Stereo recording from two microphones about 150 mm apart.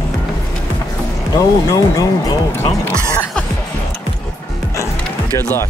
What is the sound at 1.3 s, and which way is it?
Speech, 25° left (ahead or behind).